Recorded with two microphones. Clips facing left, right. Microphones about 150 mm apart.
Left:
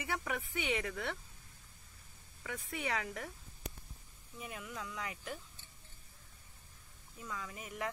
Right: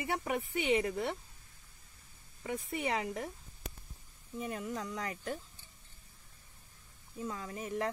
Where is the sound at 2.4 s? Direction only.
30° right (ahead or behind).